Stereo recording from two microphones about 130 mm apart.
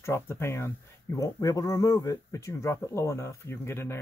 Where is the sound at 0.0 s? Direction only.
20° left (ahead or behind).